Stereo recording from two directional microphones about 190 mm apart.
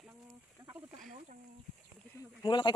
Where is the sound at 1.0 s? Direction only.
45° right (ahead or behind).